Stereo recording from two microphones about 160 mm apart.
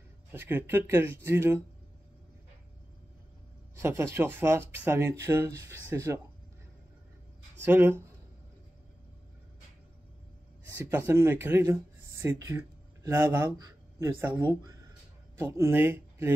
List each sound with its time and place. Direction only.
0.3 s speech: 15° right (ahead or behind)
3.7 s speech: 15° right (ahead or behind)
7.6 s speech: 15° right (ahead or behind)
10.7 s speech: 15° right (ahead or behind)